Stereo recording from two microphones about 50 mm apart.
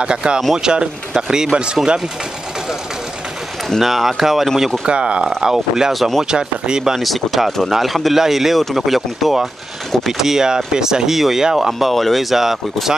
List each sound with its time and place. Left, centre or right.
0.0 s speech: centre
3.8 s speech: centre
4.8 s speech: right; by 6.2 s centre
6.3 s speech: centre
7.0 s speech: centre
11.9 s speech: centre